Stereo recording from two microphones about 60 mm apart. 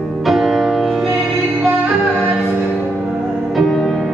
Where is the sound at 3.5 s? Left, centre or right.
Centre.